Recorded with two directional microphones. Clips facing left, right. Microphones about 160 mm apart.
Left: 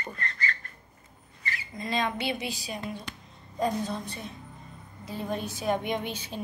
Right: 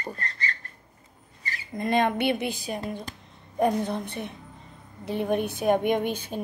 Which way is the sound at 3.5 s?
60° right (ahead or behind).